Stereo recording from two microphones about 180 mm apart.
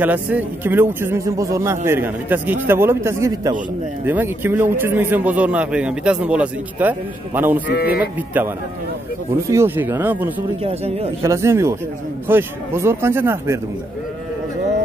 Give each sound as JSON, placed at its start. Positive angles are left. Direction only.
{"t": 0.0, "sound": "a man's voice", "side_deg": -10}
{"t": 7.7, "sound": "speech", "side_deg": 60}
{"t": 8.3, "sound": "a man's voice", "side_deg": -10}
{"t": 10.6, "sound": "speech", "side_deg": -35}
{"t": 11.2, "sound": "a man's voice", "side_deg": -15}